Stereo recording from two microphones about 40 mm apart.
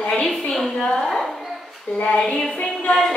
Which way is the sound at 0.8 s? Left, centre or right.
Centre.